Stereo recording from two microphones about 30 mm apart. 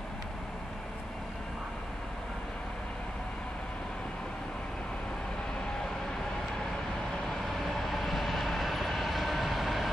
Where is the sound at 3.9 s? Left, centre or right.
Left.